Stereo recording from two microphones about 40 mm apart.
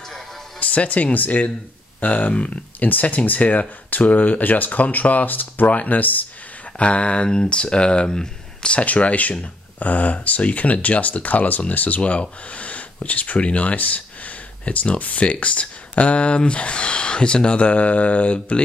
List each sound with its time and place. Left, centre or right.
0.6 s speech: left
6.8 s speech: left
8.7 s speech: left